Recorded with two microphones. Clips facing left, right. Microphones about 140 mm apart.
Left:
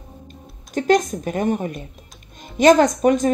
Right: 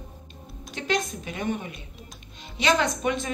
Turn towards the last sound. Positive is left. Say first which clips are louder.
# left 10 dB
turn(degrees=45)  # may be behind; listen again after turning